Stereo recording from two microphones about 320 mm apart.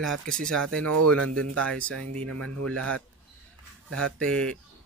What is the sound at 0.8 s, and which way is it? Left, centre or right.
Speech, right.